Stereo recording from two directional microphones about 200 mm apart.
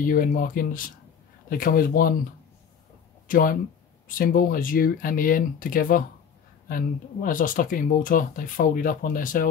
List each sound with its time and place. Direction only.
0.1 s speech: 45° left (ahead or behind)
3.3 s speech: 45° left (ahead or behind)